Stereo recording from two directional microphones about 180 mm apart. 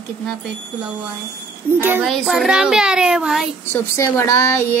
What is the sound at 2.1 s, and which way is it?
A child's voice, centre (ahead or behind).